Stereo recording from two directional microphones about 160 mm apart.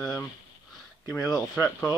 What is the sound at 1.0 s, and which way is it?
Speech, 25° left (ahead or behind).